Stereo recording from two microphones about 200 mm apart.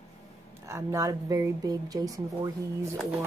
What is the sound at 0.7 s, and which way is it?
Speech, 15° right (ahead or behind).